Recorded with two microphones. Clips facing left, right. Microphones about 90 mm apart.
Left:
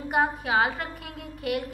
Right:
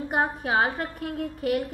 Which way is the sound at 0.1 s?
40° right (ahead or behind).